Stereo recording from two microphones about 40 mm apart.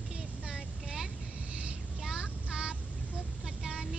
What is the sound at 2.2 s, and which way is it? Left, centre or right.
Child singing, right.